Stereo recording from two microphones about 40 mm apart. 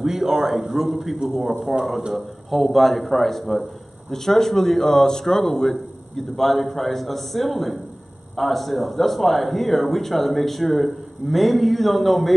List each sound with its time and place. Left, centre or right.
0.0 s a man's voice: centre